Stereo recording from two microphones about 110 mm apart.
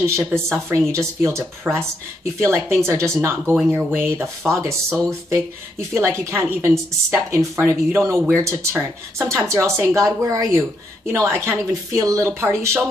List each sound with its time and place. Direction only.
0.0 s speech: 25° right (ahead or behind)